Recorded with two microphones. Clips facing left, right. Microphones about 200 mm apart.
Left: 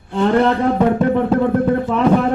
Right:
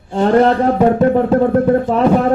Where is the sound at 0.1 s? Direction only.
40° right (ahead or behind).